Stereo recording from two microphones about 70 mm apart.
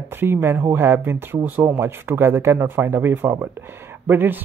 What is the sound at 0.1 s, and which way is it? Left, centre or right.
Speech, right.